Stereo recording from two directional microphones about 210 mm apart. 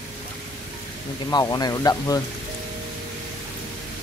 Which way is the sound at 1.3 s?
20° left (ahead or behind).